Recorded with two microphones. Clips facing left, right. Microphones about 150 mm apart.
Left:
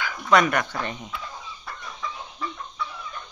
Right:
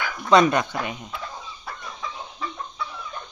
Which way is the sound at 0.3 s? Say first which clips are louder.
Right 3 dB; 25° right (ahead or behind).